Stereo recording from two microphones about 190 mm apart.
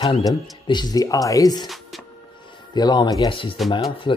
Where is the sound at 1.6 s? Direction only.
Centre (ahead or behind).